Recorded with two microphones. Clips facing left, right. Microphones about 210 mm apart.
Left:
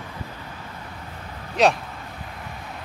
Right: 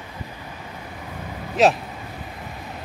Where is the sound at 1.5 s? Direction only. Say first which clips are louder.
Right 2 dB; centre (ahead or behind).